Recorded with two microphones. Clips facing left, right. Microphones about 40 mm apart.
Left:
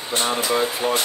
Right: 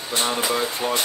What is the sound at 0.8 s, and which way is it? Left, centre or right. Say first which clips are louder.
Speech: left 2 dB; left.